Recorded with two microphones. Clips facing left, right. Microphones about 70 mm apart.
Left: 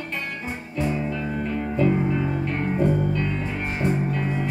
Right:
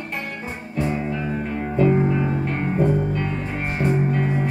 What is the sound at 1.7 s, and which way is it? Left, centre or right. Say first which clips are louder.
Music: right 4 dB; right.